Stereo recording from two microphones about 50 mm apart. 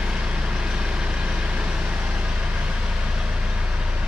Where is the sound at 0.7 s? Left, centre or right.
Centre.